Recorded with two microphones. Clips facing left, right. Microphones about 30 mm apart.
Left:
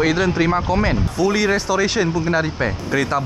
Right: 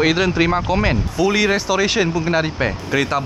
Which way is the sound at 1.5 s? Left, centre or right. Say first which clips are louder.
Right 1 dB; centre.